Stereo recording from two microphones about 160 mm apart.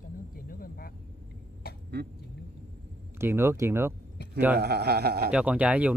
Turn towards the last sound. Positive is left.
turn(degrees=-10)  # may be behind; listen again after turning